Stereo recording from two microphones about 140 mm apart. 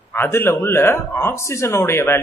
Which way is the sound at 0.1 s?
15° left (ahead or behind).